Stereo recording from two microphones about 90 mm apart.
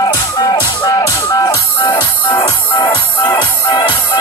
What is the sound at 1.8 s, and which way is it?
Music, 60° left (ahead or behind).